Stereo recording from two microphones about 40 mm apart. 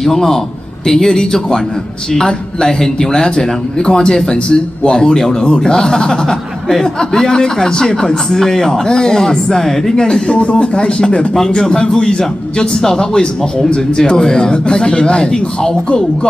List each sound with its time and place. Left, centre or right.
0.0 s speech: centre